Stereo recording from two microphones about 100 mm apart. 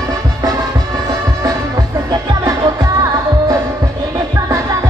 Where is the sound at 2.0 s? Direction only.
35° right (ahead or behind).